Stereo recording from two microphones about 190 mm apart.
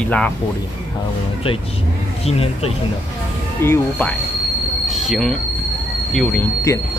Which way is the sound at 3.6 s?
10° left (ahead or behind).